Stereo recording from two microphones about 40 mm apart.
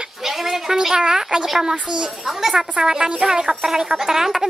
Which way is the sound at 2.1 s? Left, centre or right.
Centre.